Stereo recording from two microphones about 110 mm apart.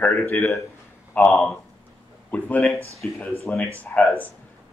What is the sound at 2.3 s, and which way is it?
Speech, 15° left (ahead or behind).